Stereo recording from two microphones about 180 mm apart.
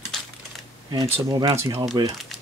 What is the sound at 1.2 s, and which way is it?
Speech, 20° right (ahead or behind).